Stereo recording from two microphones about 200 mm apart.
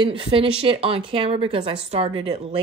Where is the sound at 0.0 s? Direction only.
25° right (ahead or behind).